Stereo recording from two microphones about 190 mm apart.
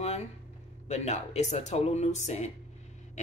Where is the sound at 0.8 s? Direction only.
35° left (ahead or behind).